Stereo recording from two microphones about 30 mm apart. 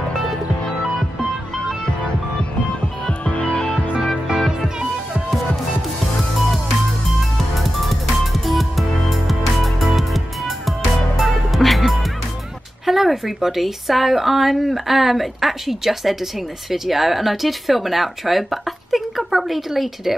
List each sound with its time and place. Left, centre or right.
3.3 s music: left
7.2 s music: centre
12.8 s speech: centre